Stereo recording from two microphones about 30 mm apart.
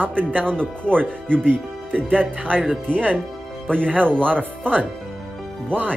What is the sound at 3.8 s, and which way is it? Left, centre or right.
Speech, right.